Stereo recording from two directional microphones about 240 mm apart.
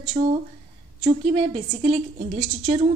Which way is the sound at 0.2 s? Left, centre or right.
Right.